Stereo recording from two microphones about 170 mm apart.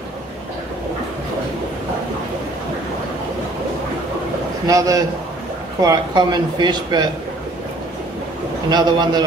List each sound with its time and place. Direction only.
4.6 s speech: 20° right (ahead or behind)
8.6 s speech: 25° right (ahead or behind)